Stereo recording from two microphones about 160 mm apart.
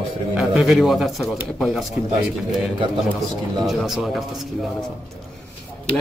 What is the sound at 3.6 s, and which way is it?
Speech, centre (ahead or behind).